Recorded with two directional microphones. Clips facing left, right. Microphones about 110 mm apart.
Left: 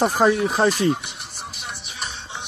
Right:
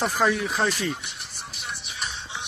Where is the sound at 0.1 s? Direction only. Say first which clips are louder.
Left 5 dB; 25° left (ahead or behind).